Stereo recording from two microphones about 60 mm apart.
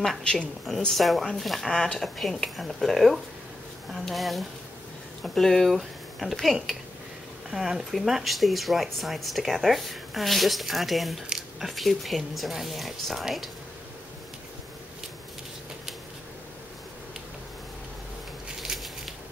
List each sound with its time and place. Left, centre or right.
0.2 s a woman's voice: centre
0.7 s speech: centre
18.6 s a sound: centre